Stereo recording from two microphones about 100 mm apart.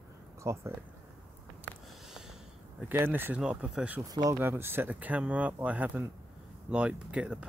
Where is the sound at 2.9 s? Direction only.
20° right (ahead or behind).